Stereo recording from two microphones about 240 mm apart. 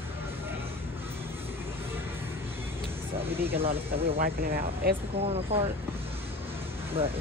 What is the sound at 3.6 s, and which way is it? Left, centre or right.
Speech, right.